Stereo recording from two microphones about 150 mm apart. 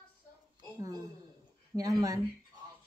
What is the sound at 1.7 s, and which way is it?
Speech, 25° right (ahead or behind).